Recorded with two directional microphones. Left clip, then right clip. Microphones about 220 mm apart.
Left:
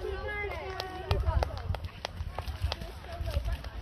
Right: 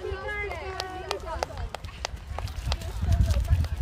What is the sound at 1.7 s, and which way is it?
Run, 10° right (ahead or behind).